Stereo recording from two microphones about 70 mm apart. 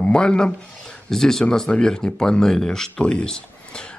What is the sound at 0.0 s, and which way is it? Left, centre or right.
Speech, centre.